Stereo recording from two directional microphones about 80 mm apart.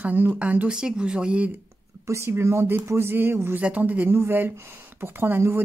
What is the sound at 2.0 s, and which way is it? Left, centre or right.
Speech, right.